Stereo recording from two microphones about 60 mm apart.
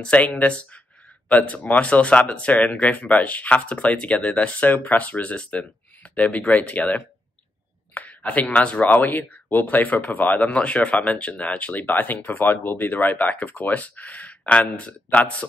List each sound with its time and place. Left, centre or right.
0.0 s speech: left
7.9 s a sound: left
8.5 s speech: left